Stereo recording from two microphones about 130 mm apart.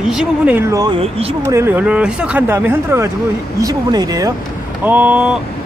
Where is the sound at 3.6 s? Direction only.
30° right (ahead or behind).